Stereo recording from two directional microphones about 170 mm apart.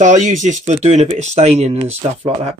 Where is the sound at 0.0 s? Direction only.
45° right (ahead or behind).